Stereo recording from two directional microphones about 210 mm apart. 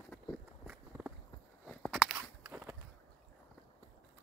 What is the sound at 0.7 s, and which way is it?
Walk, 10° right (ahead or behind).